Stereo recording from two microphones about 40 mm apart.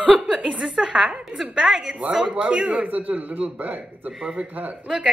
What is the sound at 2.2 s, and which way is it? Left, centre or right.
A man's voice, right.